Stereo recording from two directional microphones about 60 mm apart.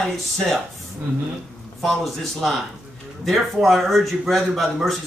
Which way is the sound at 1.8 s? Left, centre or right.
Centre.